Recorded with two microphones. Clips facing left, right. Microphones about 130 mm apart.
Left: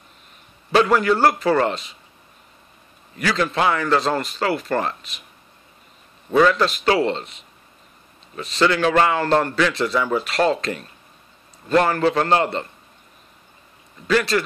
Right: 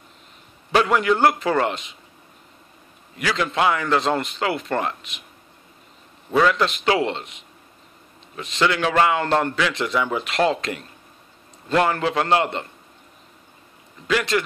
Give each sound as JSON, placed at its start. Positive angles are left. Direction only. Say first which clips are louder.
{"t": 0.7, "sound": "speech", "louder": "left 2 dB", "side_deg": -15}
{"t": 3.2, "sound": "speech", "louder": "left 1 dB", "side_deg": -10}
{"t": 6.5, "sound": "speech", "louder": "left 2 dB", "side_deg": -20}
{"t": 14.0, "sound": "speech", "louder": "left 2 dB", "side_deg": -15}